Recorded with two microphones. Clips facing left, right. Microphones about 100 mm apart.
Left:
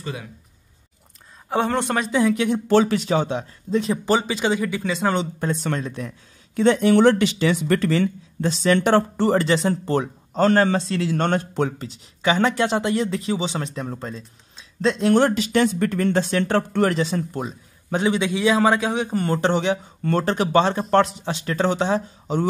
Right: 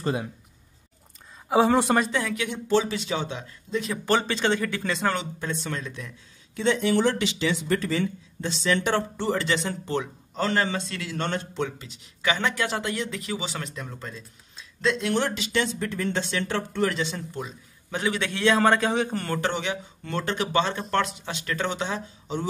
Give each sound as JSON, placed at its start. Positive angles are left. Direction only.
{"t": 1.5, "sound": "a man's voice", "side_deg": -5}
{"t": 2.0, "sound": "speech", "side_deg": 20}
{"t": 2.3, "sound": "speech", "side_deg": 35}
{"t": 2.7, "sound": "speech", "side_deg": 55}
{"t": 4.0, "sound": "speech", "side_deg": 15}
{"t": 5.1, "sound": "speech", "side_deg": 40}
{"t": 8.4, "sound": "speech", "side_deg": 45}
{"t": 11.1, "sound": "speech", "side_deg": 50}
{"t": 12.2, "sound": "speech", "side_deg": 30}
{"t": 17.9, "sound": "speech", "side_deg": 30}
{"t": 18.2, "sound": "a man's voice", "side_deg": 10}
{"t": 19.1, "sound": "speech", "side_deg": 20}
{"t": 19.5, "sound": "speech", "side_deg": 35}
{"t": 20.0, "sound": "speech", "side_deg": 45}